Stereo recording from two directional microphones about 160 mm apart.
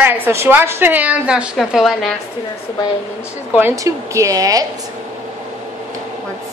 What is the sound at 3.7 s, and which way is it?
Speech, 20° right (ahead or behind).